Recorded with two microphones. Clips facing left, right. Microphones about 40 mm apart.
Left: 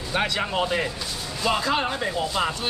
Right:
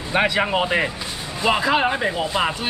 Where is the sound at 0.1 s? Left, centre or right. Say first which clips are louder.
Right 6 dB; right.